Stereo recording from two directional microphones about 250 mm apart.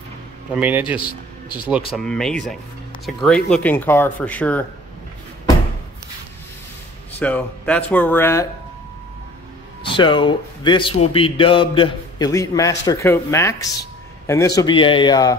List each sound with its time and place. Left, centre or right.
0.6 s a man's voice: centre
7.2 s speech: centre
9.8 s speech: centre